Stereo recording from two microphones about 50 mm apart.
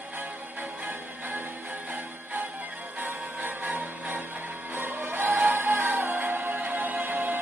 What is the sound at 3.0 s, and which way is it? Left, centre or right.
Music, right.